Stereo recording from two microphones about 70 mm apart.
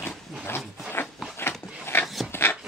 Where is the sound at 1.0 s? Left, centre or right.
Left.